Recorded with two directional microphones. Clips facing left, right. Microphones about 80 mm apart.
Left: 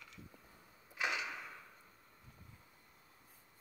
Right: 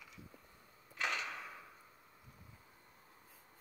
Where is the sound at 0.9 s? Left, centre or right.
Centre.